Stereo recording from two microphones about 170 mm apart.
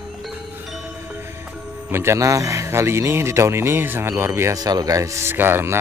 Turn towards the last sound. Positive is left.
turn(degrees=-15)  # may be behind; listen again after turning